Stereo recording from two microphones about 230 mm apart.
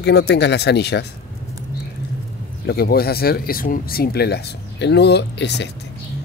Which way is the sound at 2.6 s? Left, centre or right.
Left.